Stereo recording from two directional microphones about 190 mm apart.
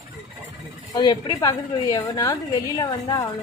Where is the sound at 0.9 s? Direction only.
20° left (ahead or behind).